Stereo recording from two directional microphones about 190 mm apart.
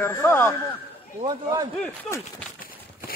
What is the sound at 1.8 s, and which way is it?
Speech, 5° left (ahead or behind).